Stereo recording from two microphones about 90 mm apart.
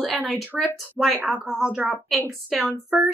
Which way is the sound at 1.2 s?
20° right (ahead or behind).